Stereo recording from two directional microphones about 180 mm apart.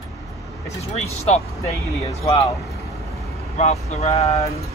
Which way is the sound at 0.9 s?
35° left (ahead or behind).